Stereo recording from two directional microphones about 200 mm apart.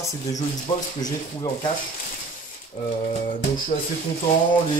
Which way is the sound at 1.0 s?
20° left (ahead or behind).